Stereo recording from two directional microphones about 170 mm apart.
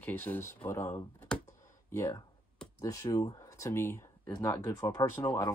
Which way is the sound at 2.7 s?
20° left (ahead or behind).